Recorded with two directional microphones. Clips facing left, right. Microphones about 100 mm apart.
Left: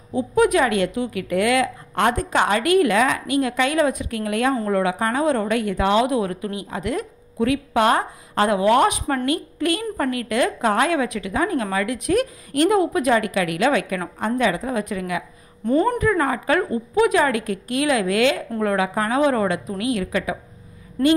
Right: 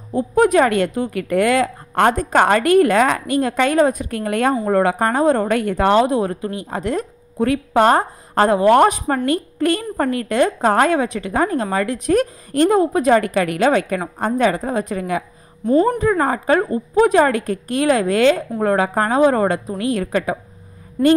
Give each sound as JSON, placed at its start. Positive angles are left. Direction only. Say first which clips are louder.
{"t": 0.1, "sound": "speech", "louder": "right 3 dB", "side_deg": -40}
{"t": 6.0, "sound": "a woman's voice", "louder": "right 3 dB", "side_deg": -35}
{"t": 15.6, "sound": "a woman's voice", "louder": "right 3 dB", "side_deg": 0}
{"t": 16.0, "sound": "a woman's voice", "louder": "right 3 dB", "side_deg": -35}